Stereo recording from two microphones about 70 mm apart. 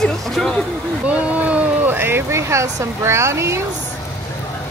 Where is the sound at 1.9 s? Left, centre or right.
Right.